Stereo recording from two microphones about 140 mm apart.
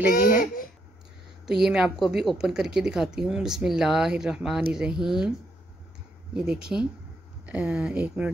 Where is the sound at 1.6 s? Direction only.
5° right (ahead or behind).